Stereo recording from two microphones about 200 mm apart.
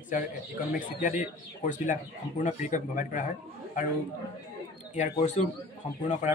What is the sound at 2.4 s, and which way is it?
Speech, 40° left (ahead or behind).